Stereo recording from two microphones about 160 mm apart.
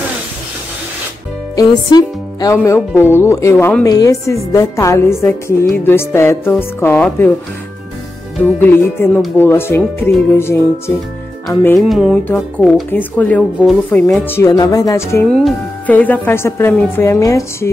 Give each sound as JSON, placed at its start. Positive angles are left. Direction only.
{"t": 1.5, "sound": "speech", "side_deg": 25}
{"t": 3.9, "sound": "music", "side_deg": 20}
{"t": 5.2, "sound": "speech", "side_deg": 15}
{"t": 8.4, "sound": "speech", "side_deg": 10}
{"t": 11.5, "sound": "music", "side_deg": 20}
{"t": 11.8, "sound": "music", "side_deg": 0}
{"t": 12.3, "sound": "speech", "side_deg": 5}